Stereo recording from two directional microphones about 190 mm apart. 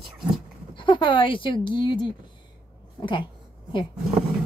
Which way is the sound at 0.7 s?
25° left (ahead or behind).